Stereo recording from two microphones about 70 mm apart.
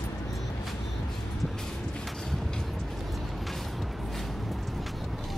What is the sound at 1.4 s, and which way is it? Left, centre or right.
Vehicle, centre.